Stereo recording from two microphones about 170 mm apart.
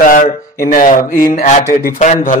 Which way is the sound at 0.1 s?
55° left (ahead or behind).